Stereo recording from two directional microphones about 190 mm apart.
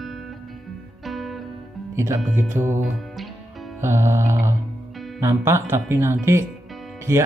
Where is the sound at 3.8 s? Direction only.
15° right (ahead or behind).